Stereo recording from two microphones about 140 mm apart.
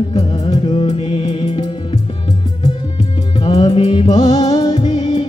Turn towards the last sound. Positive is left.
turn(degrees=40)  # may be behind; listen again after turning